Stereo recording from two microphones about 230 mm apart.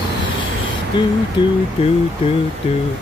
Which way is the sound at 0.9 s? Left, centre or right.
Left.